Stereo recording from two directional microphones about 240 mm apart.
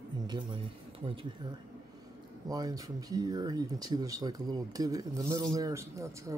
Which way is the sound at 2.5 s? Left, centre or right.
Centre.